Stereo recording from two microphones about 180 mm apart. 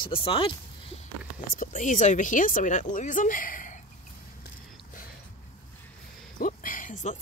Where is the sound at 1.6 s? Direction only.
45° left (ahead or behind).